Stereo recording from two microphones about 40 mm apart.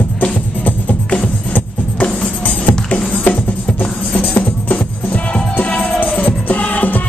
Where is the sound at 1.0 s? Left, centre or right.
Left.